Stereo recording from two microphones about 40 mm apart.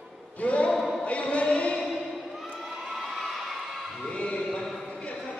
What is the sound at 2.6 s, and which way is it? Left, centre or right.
Children shouting, centre.